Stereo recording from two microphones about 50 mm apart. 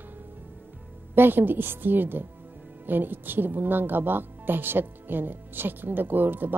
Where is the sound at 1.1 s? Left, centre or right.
Right.